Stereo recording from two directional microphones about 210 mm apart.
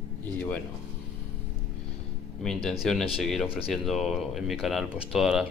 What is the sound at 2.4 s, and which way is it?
Speech, centre (ahead or behind).